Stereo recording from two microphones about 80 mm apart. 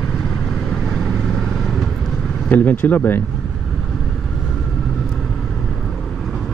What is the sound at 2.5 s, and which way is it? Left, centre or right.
Speech, left.